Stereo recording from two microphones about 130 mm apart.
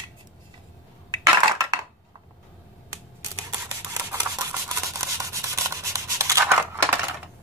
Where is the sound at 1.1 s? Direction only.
25° right (ahead or behind).